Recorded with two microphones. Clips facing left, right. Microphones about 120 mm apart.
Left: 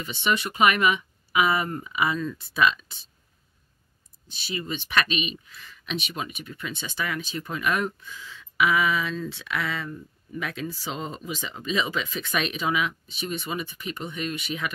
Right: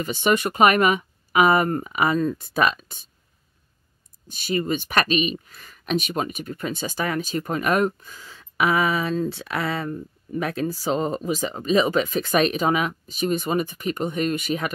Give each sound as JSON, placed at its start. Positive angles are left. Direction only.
{"t": 0.0, "sound": "speech", "side_deg": -45}
{"t": 4.3, "sound": "speech", "side_deg": -50}